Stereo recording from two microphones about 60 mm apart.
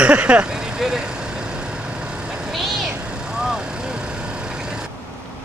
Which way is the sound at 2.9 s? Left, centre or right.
Centre.